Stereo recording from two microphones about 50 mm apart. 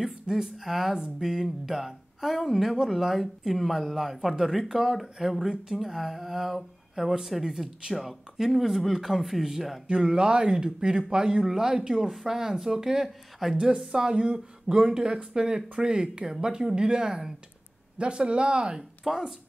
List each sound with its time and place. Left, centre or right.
0.0 s speech: centre
9.8 s speech: centre
13.7 s speech: centre